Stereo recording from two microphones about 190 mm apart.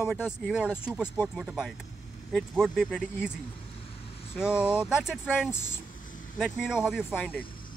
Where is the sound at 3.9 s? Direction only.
30° left (ahead or behind).